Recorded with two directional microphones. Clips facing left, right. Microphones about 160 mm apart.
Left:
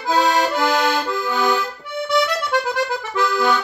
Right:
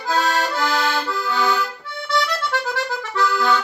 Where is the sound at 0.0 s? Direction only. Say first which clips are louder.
Left 3 dB; 15° left (ahead or behind).